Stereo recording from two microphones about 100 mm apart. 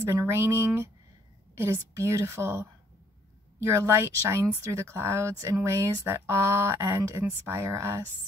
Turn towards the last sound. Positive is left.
turn(degrees=-30)  # may be behind; listen again after turning